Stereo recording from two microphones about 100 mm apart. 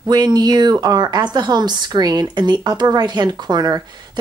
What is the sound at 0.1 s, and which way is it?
Speech, 45° right (ahead or behind).